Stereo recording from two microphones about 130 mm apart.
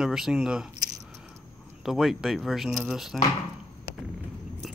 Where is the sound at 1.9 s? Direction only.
Centre (ahead or behind).